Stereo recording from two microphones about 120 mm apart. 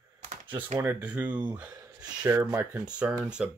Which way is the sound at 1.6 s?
30° right (ahead or behind).